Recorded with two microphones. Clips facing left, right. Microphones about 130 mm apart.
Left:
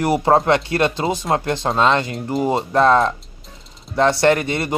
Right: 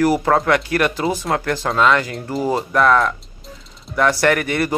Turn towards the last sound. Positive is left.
turn(degrees=25)  # may be behind; listen again after turning